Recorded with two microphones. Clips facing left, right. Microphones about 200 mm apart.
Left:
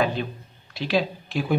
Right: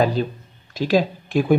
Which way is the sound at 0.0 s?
40° right (ahead or behind).